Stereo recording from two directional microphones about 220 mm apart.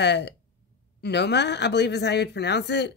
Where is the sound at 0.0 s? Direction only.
50° left (ahead or behind).